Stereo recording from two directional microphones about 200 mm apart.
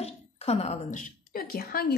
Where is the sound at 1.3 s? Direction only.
45° left (ahead or behind).